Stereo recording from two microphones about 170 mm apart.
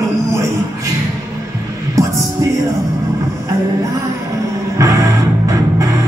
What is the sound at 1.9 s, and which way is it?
Music, 20° right (ahead or behind).